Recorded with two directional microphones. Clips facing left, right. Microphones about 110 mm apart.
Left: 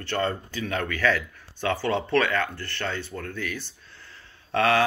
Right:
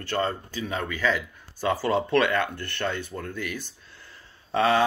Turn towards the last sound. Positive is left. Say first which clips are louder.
# even
turn(degrees=-5)  # may be behind; listen again after turning